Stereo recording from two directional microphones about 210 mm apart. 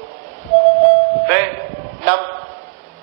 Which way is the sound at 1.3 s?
50° right (ahead or behind).